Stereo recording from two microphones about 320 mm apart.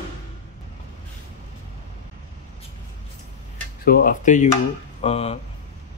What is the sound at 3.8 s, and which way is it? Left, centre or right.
Speech, left.